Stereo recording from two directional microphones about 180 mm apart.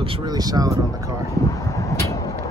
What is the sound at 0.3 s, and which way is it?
Speech, 20° right (ahead or behind).